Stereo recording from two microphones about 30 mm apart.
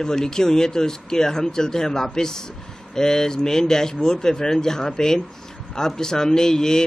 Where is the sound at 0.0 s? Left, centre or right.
Left.